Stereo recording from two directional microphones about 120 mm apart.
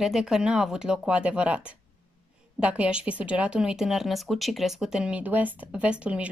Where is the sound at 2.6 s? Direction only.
10° right (ahead or behind).